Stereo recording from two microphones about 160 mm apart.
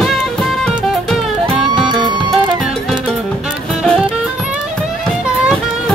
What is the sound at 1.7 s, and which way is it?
Music, 30° right (ahead or behind).